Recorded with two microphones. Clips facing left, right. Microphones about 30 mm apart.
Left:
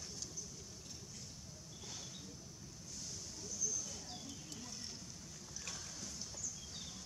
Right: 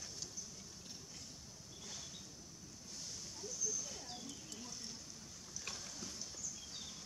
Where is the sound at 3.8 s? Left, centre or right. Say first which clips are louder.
Even; centre.